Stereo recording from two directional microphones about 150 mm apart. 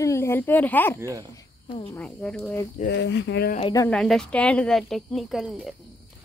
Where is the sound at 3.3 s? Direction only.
90° left.